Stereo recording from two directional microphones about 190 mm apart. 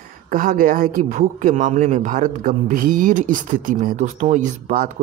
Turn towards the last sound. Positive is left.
turn(degrees=-45)  # may be behind; listen again after turning